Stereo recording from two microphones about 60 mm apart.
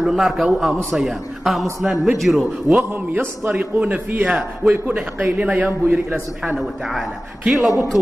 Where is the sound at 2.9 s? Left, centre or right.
Right.